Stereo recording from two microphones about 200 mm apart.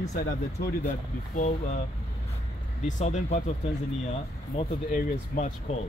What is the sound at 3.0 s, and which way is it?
Speech, 35° left (ahead or behind).